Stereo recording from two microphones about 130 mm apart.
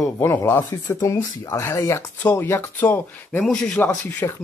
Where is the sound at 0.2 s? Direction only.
20° left (ahead or behind).